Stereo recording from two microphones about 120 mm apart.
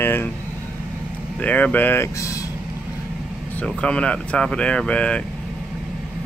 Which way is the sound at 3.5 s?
10° left (ahead or behind).